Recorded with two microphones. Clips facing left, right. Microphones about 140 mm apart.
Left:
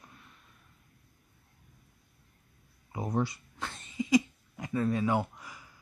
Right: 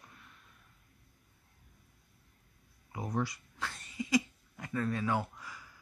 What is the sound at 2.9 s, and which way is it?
Speech, 25° left (ahead or behind).